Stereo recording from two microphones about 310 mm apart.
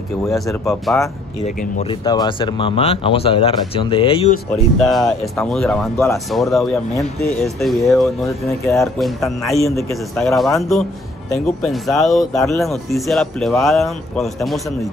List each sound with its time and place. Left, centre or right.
0.2 s speech: centre
1.6 s speech: centre
4.7 s speech: centre